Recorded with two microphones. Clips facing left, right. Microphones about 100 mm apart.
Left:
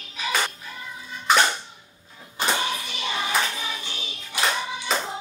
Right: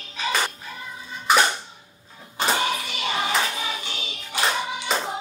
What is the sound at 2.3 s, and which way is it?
Music, 20° right (ahead or behind).